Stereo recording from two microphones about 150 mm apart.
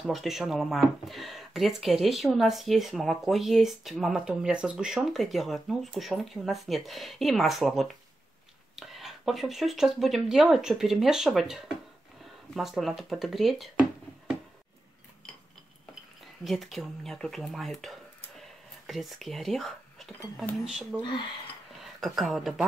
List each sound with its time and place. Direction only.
0.0 s speech: centre (ahead or behind)
16.4 s speech: centre (ahead or behind)
21.0 s speech: 30° left (ahead or behind)
22.0 s speech: centre (ahead or behind)